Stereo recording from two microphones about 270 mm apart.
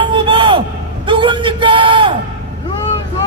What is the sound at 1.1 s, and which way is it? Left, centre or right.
Bellow, centre.